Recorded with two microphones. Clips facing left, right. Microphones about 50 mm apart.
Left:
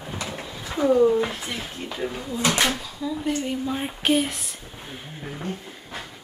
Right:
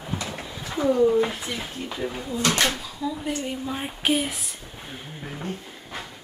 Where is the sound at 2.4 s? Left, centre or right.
Centre.